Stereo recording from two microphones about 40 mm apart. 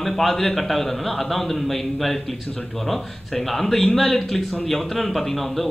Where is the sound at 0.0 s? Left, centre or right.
Centre.